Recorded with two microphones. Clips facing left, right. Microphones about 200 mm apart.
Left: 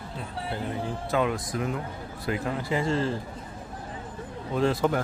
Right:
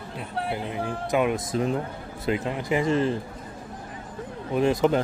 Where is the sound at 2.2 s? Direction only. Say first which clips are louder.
Right 3 dB; 20° right (ahead or behind).